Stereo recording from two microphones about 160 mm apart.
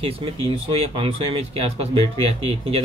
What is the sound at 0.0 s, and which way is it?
Speech, 35° right (ahead or behind).